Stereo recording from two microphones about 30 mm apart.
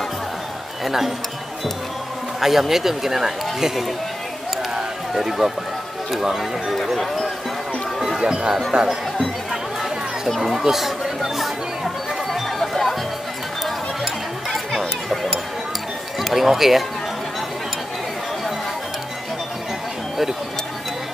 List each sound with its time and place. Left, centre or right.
0.8 s speech: centre
2.4 s speech: centre
4.7 s run: centre
6.3 s speech: centre
8.2 s speech: right
10.4 s speech: centre
11.3 s music: centre
16.2 s a sound: centre
16.4 s speech: centre